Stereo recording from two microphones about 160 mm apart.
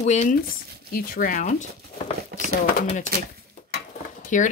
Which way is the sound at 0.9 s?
60° left (ahead or behind).